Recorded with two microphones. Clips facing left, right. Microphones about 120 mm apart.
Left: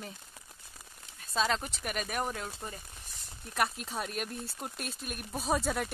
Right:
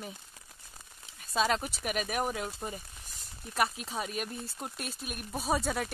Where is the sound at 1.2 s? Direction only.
5° right (ahead or behind).